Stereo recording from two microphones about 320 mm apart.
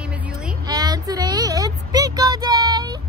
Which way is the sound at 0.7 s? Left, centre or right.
Centre.